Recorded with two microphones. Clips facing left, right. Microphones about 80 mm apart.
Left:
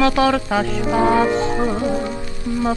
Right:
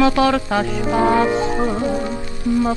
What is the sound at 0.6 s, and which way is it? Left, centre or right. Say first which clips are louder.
Music: even; centre.